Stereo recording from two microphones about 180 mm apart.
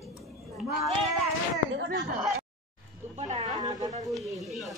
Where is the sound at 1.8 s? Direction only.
90° right.